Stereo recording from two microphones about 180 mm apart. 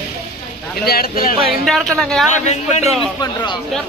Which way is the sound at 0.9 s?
55° left (ahead or behind).